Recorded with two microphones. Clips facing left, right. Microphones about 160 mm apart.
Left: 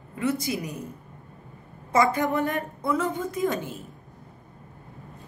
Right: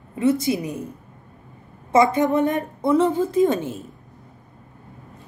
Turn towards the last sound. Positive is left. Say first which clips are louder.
# right 8 dB
turn(degrees=-25)  # may be behind; listen again after turning